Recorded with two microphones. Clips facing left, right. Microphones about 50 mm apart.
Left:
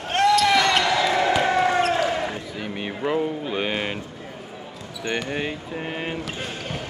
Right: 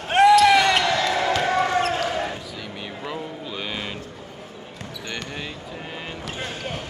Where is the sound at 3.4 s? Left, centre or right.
Left.